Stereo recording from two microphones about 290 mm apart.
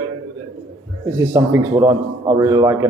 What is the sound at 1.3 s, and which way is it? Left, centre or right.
A man's voice, centre.